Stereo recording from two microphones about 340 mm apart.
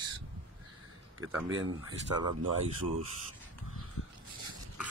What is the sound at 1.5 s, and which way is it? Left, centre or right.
Speech, right.